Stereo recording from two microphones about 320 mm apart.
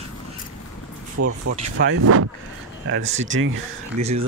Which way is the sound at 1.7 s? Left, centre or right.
Right.